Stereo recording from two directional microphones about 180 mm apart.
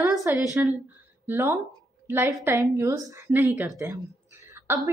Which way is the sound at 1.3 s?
10° right (ahead or behind).